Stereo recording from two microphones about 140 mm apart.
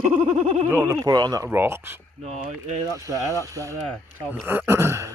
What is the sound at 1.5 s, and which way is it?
Speech, 15° right (ahead or behind).